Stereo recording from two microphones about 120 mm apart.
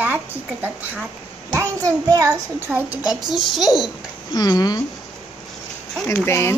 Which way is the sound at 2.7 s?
10° right (ahead or behind).